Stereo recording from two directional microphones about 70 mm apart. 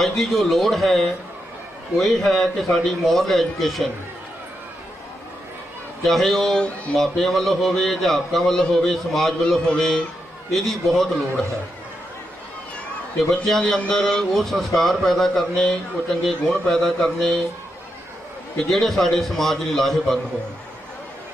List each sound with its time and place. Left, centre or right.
0.0 s a man's voice: centre
6.0 s a man's voice: centre
13.3 s a man's voice: centre
18.7 s a man's voice: centre